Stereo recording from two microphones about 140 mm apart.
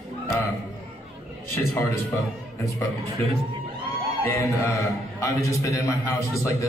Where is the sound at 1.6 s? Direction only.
20° left (ahead or behind).